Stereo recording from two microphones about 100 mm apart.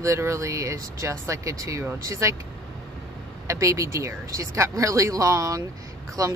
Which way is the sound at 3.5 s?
30° right (ahead or behind).